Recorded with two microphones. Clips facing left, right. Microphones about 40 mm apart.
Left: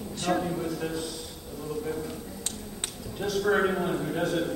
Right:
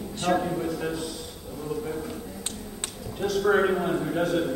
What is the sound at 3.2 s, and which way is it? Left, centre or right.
A man's voice, centre.